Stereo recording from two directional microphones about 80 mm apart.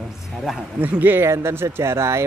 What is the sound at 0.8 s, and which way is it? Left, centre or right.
Speech, right.